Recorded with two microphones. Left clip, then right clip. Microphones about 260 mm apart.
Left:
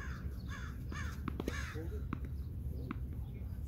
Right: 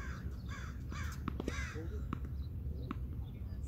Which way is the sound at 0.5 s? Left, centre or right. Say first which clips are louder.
Left 1 dB; centre.